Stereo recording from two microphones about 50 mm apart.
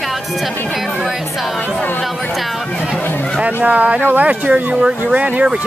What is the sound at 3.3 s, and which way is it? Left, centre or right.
Speech, right.